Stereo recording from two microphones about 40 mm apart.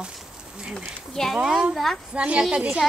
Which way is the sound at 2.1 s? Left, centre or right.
Right.